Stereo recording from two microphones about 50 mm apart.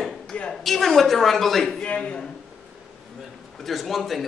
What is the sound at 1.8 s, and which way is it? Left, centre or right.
Speech, left.